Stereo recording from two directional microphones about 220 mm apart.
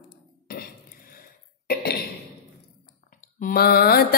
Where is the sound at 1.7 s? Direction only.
45° left (ahead or behind).